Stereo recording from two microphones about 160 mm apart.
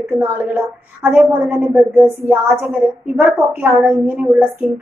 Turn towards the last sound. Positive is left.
turn(degrees=-10)  # may be behind; listen again after turning